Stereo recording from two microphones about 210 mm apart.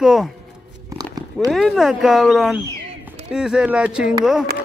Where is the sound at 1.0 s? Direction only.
20° right (ahead or behind).